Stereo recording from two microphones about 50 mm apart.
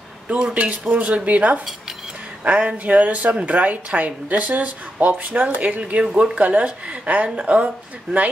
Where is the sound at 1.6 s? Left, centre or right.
Centre.